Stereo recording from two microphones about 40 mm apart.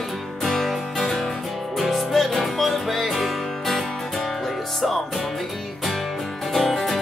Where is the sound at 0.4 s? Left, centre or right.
Centre.